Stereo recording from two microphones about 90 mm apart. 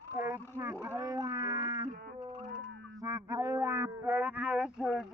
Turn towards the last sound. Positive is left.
turn(degrees=-10)  # may be behind; listen again after turning